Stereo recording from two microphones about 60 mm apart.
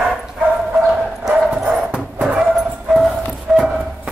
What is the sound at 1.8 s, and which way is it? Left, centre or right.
Music, centre.